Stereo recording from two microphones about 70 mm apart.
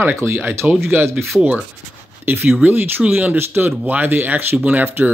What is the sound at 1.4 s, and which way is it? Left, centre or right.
Speech, centre.